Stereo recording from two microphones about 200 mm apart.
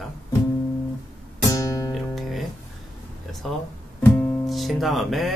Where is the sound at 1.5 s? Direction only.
15° left (ahead or behind).